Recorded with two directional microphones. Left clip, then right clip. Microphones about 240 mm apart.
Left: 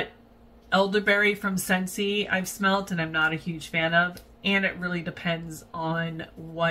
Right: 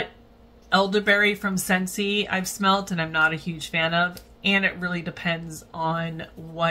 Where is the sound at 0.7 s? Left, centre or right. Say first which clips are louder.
Right 2 dB; centre.